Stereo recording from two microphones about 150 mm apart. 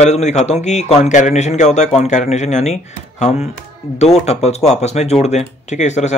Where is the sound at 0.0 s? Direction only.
50° left (ahead or behind).